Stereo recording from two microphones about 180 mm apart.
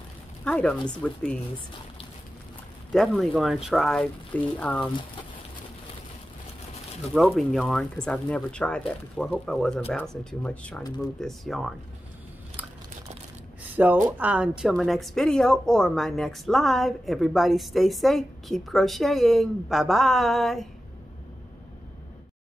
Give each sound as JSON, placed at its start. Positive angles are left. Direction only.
{"t": 0.5, "sound": "a woman's voice", "side_deg": 5}
{"t": 2.9, "sound": "a woman's voice", "side_deg": 0}
{"t": 7.2, "sound": "a woman's voice", "side_deg": 0}
{"t": 13.6, "sound": "a sound", "side_deg": -10}
{"t": 14.1, "sound": "a woman's voice", "side_deg": -10}